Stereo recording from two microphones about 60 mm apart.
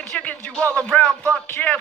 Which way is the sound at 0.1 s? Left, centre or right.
Centre.